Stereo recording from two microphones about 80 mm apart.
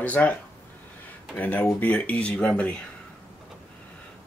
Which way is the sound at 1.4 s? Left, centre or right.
Left.